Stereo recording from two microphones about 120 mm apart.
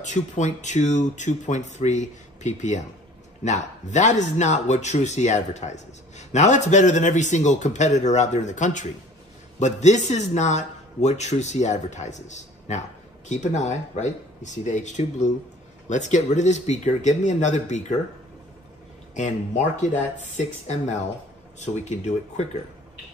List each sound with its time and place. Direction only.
0.0 s speech: 85° left
9.6 s speech: 80° left
19.1 s speech: 90° left; by 22.5 s 70° left (ahead or behind)